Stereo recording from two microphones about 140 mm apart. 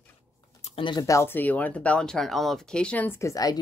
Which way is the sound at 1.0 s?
20° left (ahead or behind).